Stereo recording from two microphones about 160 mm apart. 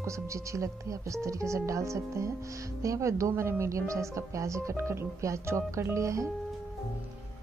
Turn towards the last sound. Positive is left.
turn(degrees=-20)  # may be behind; listen again after turning